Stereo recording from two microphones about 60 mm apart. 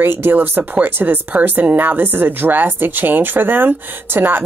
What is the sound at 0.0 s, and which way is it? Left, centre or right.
Speech, right.